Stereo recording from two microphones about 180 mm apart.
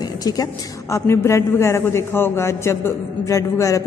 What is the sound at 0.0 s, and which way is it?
A woman's voice, 20° left (ahead or behind).